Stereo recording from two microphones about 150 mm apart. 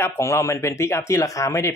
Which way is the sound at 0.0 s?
20° left (ahead or behind).